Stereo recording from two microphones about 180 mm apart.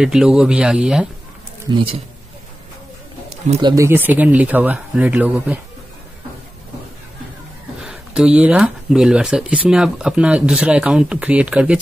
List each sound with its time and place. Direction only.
0.0 s speech: 5° right (ahead or behind)
1.7 s speech: 25° right (ahead or behind)
3.6 s speech: 15° right (ahead or behind)
7.8 s speech: 5° right (ahead or behind)